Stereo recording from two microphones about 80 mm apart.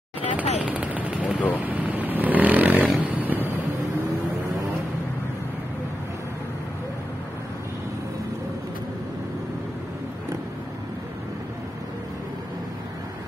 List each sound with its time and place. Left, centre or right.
0.4 s gunshot: centre
1.6 s snoring: right
3.0 s a sound: right